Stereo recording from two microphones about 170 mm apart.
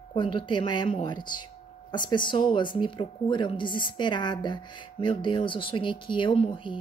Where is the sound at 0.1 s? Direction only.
30° left (ahead or behind).